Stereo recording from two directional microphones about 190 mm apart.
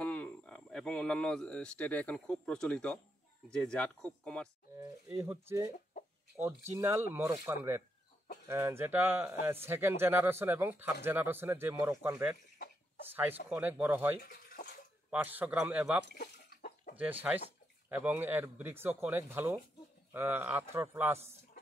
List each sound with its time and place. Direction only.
0.0 s speech: 5° left (ahead or behind)
4.7 s speech: 15° right (ahead or behind)
14.2 s water: 50° left (ahead or behind)
15.0 s speech: 10° right (ahead or behind)